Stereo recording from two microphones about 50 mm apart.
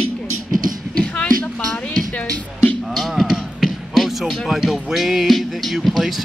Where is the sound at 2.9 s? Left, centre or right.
Centre.